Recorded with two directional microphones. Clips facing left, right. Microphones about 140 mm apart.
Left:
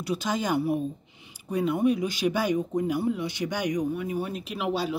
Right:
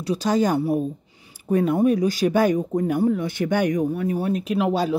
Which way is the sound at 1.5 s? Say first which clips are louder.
Right 5 dB; 50° right (ahead or behind).